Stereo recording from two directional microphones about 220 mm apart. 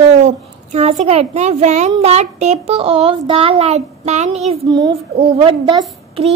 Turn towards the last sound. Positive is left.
turn(degrees=-25)  # may be behind; listen again after turning